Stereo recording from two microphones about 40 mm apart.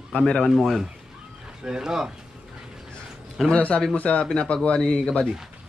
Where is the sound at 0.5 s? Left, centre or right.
Centre.